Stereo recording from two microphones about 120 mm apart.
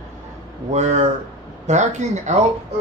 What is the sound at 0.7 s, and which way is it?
Speech, 70° right (ahead or behind).